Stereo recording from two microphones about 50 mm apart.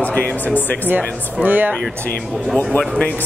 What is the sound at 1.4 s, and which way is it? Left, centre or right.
Speech, right.